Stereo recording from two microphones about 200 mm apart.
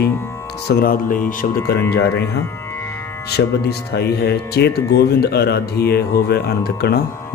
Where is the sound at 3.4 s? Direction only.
65° left (ahead or behind).